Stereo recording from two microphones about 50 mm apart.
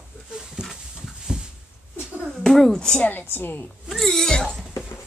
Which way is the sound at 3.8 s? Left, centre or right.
Centre.